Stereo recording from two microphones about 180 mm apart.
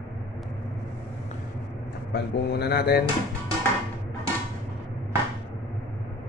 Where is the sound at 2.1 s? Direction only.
65° left (ahead or behind).